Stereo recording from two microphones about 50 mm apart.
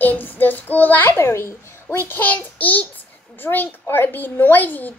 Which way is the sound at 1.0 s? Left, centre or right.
Left.